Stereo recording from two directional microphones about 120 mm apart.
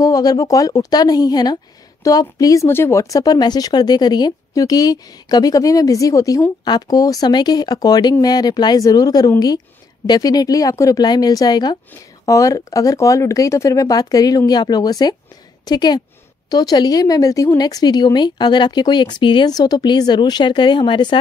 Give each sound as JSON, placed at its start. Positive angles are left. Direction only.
{"t": 0.0, "sound": "a woman's voice", "side_deg": 30}